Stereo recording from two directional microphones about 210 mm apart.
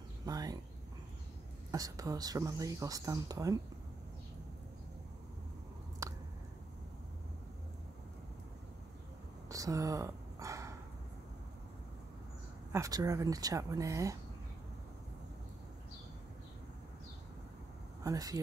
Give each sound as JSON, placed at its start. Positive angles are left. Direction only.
{"t": 0.2, "sound": "speech", "side_deg": -15}
{"t": 1.7, "sound": "speech", "side_deg": -15}
{"t": 9.5, "sound": "a sound", "side_deg": -15}
{"t": 12.7, "sound": "speech", "side_deg": -15}
{"t": 18.0, "sound": "speech", "side_deg": -15}